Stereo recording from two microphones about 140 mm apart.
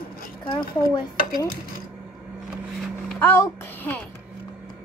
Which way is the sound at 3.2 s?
15° left (ahead or behind).